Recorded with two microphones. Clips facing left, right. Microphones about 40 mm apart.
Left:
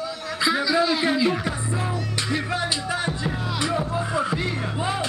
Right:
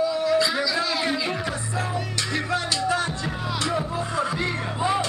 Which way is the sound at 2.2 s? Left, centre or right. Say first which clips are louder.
Left 1 dB; centre.